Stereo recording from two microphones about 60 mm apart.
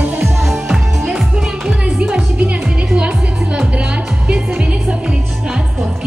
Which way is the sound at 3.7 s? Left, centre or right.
Centre.